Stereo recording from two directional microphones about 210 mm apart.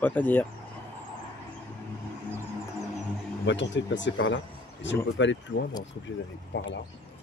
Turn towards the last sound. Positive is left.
turn(degrees=55)  # may be behind; listen again after turning